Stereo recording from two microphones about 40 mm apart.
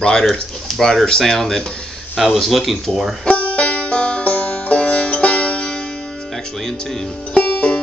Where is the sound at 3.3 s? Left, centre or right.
Left.